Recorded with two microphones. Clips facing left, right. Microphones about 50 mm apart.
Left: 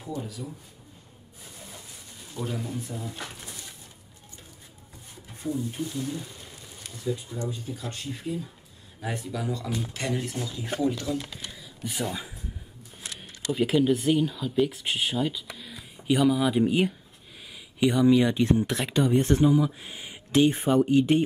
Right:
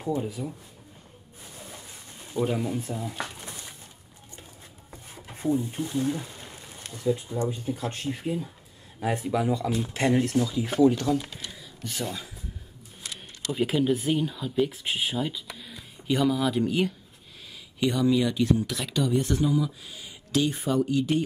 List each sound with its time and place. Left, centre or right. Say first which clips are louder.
0.1 s speech: right 5 dB; right
2.4 s speech: right 5 dB; right
5.4 s speech: right 4 dB; right
10.9 s speech: right 5 dB; right
11.8 s speech: left 2 dB; centre
13.2 s speech: left 1 dB; centre; by 21.2 s left